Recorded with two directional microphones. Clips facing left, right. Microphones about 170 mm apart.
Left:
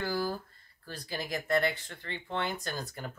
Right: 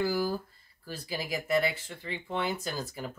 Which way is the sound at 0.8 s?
10° right (ahead or behind).